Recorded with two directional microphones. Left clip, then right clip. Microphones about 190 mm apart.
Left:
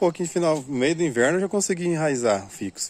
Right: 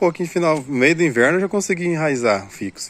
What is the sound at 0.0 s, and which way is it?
Speech, 25° left (ahead or behind).